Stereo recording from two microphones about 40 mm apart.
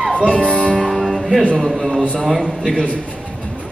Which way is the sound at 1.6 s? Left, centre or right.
Centre.